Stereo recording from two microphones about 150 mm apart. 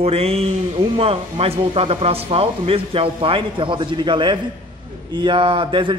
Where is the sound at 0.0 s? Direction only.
40° right (ahead or behind).